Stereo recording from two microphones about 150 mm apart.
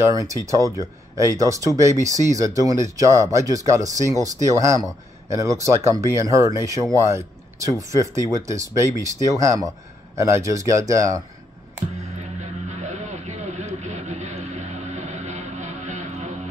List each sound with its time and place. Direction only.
0.1 s speech: 20° right (ahead or behind)
12.2 s music: 50° right (ahead or behind)